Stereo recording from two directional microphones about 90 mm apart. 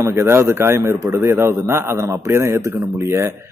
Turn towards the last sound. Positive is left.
turn(degrees=-30)  # may be behind; listen again after turning